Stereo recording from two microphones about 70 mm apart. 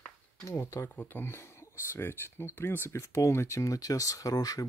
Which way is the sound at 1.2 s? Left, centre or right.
Left.